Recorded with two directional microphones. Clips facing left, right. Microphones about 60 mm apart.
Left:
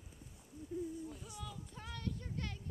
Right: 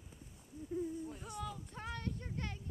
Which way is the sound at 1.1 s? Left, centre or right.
Right.